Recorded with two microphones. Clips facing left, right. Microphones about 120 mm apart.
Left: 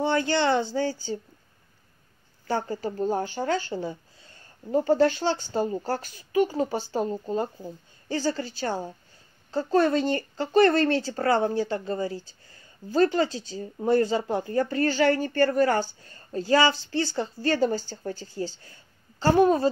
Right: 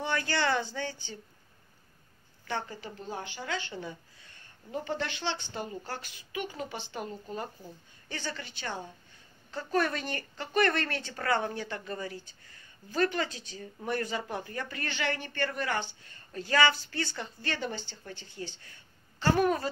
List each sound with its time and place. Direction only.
0.0 s speech: 30° left (ahead or behind)
2.4 s speech: 40° left (ahead or behind)